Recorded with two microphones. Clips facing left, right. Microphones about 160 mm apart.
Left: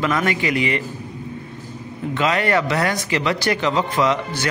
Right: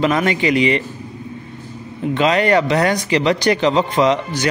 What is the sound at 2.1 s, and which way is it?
Speech, 25° right (ahead or behind).